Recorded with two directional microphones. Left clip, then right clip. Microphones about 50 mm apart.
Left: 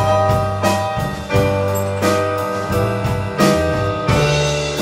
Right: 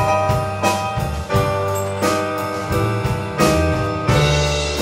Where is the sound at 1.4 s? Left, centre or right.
Centre.